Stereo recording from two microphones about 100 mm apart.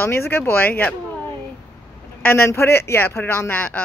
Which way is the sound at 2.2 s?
25° left (ahead or behind).